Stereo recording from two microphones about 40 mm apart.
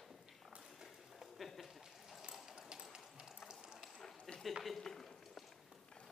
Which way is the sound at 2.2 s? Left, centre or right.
Centre.